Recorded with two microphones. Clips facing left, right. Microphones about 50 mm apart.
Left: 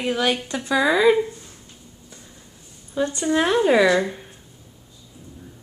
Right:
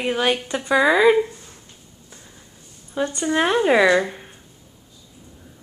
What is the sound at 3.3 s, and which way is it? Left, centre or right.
A woman's voice, centre.